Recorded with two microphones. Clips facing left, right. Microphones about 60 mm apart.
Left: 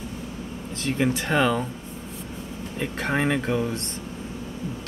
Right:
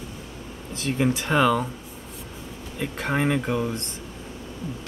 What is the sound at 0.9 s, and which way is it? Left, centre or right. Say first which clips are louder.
Speech: even; centre.